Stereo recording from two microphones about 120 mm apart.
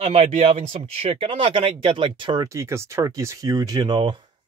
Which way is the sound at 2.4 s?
25° right (ahead or behind).